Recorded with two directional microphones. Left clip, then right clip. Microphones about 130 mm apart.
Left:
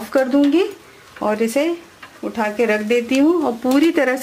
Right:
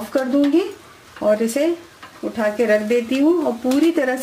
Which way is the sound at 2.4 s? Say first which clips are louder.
Right 1 dB; 20° left (ahead or behind).